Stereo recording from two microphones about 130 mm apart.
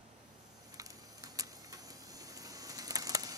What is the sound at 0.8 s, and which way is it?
Vehicle, 25° right (ahead or behind).